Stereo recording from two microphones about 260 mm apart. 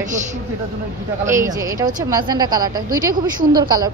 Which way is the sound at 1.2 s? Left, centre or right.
Centre.